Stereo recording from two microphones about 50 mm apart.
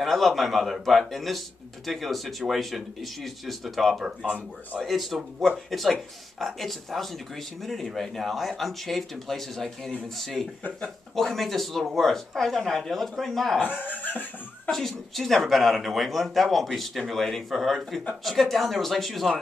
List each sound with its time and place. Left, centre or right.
0.0 s speech: centre
13.6 s speech: left
14.7 s speech: centre